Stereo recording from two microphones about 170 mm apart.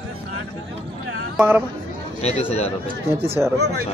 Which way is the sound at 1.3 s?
10° right (ahead or behind).